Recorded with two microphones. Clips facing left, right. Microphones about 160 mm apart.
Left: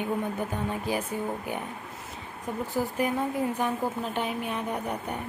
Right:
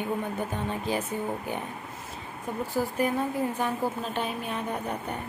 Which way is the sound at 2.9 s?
15° left (ahead or behind).